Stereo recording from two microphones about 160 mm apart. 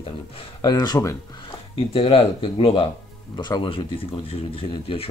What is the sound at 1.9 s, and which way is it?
Speech, 35° left (ahead or behind).